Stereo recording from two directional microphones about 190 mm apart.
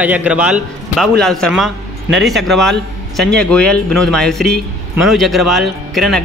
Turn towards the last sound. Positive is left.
turn(degrees=0)  # may be behind; listen again after turning